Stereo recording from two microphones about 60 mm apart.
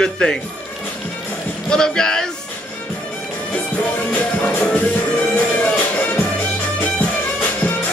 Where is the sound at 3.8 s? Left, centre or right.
Left.